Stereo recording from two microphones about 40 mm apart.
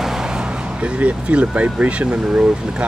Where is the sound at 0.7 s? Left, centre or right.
Right.